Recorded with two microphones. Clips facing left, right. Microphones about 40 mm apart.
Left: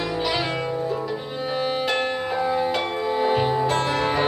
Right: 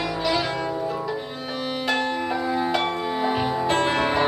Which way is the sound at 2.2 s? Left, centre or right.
Centre.